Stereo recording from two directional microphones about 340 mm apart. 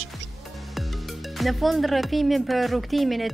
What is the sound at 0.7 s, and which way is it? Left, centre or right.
Speech, centre.